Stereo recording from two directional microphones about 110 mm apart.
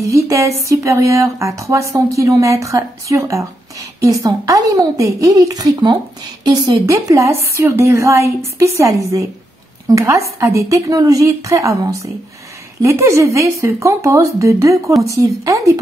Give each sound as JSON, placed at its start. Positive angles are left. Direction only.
{"t": 0.0, "sound": "a woman's voice", "side_deg": -25}